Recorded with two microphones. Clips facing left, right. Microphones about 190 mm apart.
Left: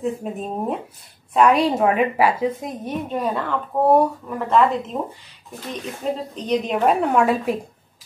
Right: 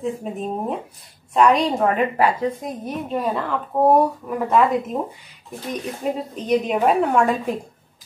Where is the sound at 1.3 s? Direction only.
5° left (ahead or behind).